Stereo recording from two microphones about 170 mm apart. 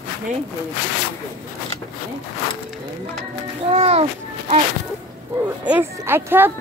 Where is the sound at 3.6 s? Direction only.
35° right (ahead or behind).